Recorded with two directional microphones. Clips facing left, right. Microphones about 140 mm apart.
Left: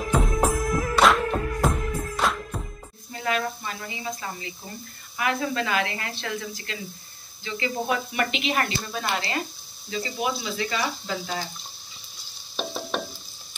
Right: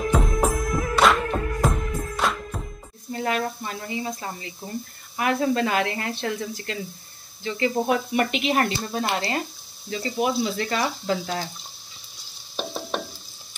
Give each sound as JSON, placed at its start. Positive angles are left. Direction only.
{"t": 0.0, "sound": "music", "side_deg": 0}
{"t": 3.1, "sound": "a sound", "side_deg": -45}
{"t": 5.1, "sound": "speech", "side_deg": -40}
{"t": 8.5, "sound": "speech", "side_deg": -30}
{"t": 9.8, "sound": "speech", "side_deg": -50}